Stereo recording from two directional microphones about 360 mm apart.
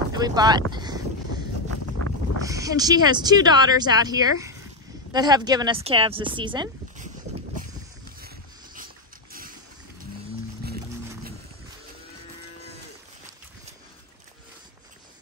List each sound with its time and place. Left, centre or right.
0.1 s boat: centre
2.0 s boat: left
2.4 s speech: centre
8.7 s dog: right